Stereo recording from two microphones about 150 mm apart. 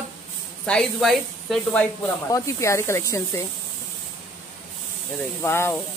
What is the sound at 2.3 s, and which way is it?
Speech, 20° left (ahead or behind).